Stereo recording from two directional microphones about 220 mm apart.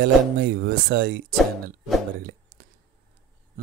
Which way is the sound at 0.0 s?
45° right (ahead or behind).